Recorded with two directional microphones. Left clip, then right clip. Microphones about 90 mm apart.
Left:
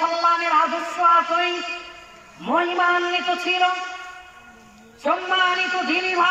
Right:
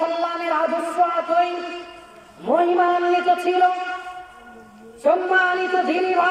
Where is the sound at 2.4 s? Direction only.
45° right (ahead or behind).